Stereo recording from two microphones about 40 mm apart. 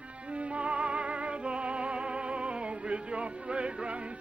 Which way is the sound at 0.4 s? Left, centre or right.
Right.